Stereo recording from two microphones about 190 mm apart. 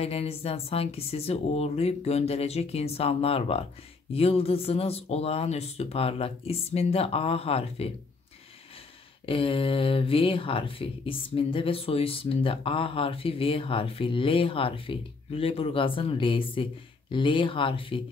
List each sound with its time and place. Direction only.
0.0 s speech: 30° left (ahead or behind)
9.2 s speech: 30° left (ahead or behind)